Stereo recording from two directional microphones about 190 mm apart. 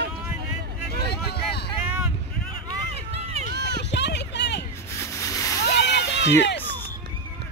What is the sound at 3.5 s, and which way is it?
Run, 60° right (ahead or behind).